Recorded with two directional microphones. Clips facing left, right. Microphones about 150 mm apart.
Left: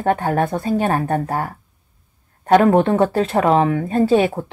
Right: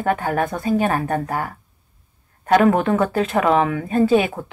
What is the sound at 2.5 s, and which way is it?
Speech, 25° left (ahead or behind).